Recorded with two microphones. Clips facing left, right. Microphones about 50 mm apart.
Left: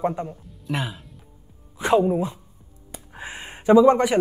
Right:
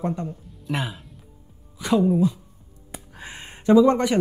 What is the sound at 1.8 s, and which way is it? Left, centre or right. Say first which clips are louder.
Speech: even; left.